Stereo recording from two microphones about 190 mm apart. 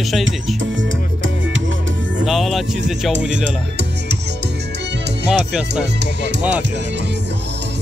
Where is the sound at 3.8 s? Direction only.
65° right (ahead or behind).